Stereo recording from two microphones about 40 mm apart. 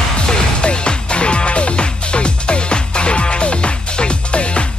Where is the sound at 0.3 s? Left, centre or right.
Left.